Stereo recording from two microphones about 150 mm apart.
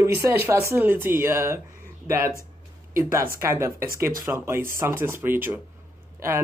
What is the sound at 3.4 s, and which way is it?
Speech, 15° right (ahead or behind).